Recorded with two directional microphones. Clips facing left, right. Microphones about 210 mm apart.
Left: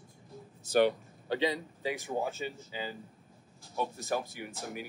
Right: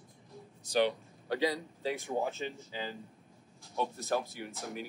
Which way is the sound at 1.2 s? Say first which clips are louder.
Left 1 dB; 25° left (ahead or behind).